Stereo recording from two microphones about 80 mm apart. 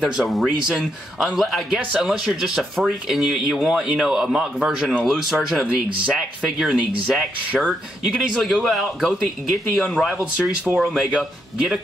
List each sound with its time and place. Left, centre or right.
0.1 s a man's voice: centre
9.8 s speech: centre
10.1 s a man's voice: centre